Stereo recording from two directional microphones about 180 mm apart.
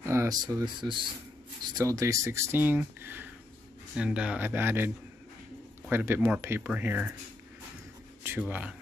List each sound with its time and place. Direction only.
0.0 s speech: 15° right (ahead or behind)
8.4 s speech: 5° right (ahead or behind)